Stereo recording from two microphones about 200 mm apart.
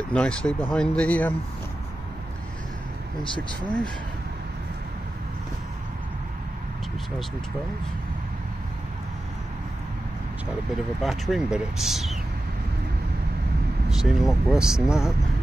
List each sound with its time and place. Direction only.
0.1 s speech: 5° left (ahead or behind)
11.0 s speech: centre (ahead or behind)
13.8 s speech: centre (ahead or behind)